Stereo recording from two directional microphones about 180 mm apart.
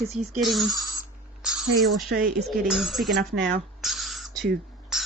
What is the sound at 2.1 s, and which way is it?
Speech, 75° right (ahead or behind).